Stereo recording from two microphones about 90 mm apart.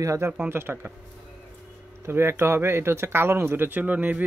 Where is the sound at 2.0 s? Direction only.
25° right (ahead or behind).